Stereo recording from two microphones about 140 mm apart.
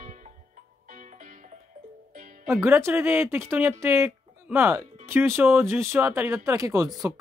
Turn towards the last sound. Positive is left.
turn(degrees=-25)  # may be behind; listen again after turning